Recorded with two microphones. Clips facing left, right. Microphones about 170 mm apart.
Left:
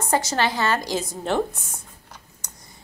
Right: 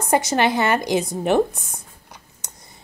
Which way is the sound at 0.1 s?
15° right (ahead or behind).